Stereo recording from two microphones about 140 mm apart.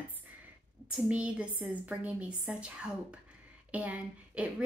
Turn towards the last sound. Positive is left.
turn(degrees=-10)  # may be behind; listen again after turning